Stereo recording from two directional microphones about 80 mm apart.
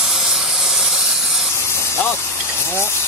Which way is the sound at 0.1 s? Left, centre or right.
Centre.